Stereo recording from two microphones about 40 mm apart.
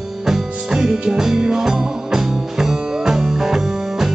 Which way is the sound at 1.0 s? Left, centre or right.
Right.